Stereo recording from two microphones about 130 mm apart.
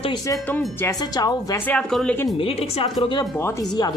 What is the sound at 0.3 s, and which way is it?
A woman's voice, 20° left (ahead or behind).